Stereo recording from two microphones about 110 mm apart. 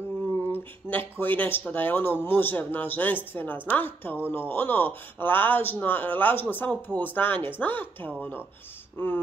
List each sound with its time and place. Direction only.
0.5 s speech: 15° left (ahead or behind)